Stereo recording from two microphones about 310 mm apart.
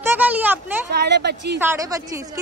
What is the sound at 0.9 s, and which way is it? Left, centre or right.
Speech, right.